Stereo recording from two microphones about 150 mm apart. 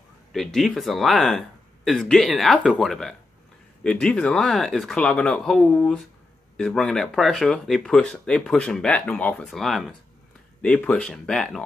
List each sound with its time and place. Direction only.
0.3 s speech: centre (ahead or behind)